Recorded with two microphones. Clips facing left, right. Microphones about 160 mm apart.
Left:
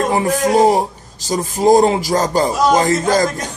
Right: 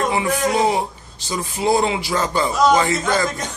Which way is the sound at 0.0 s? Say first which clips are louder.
Left 4 dB; 40° left (ahead or behind).